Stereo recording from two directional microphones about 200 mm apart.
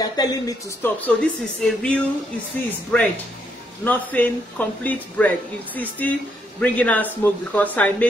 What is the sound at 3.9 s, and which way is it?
Speech, 10° left (ahead or behind).